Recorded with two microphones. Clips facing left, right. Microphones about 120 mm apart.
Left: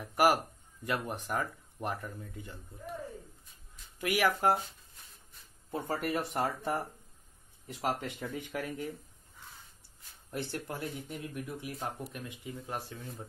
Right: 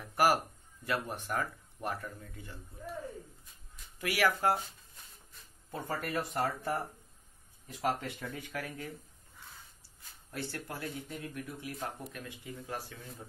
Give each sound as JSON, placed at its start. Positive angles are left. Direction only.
{"t": 0.0, "sound": "speech", "side_deg": 15}
{"t": 4.0, "sound": "speech", "side_deg": 20}
{"t": 5.9, "sound": "speech", "side_deg": 15}
{"t": 7.8, "sound": "speech", "side_deg": 20}
{"t": 10.3, "sound": "speech", "side_deg": 20}